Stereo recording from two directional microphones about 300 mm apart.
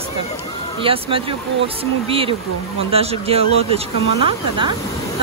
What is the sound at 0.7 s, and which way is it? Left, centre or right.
Speech, centre.